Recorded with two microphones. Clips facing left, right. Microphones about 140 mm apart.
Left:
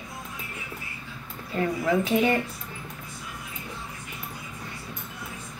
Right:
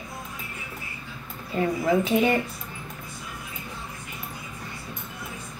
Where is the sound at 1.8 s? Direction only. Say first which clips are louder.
Right 1 dB; 20° right (ahead or behind).